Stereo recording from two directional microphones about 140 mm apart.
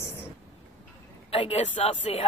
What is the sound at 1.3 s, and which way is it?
Speech, 45° left (ahead or behind).